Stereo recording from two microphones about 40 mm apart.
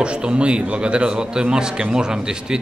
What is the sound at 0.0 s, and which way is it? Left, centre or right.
Speech, right.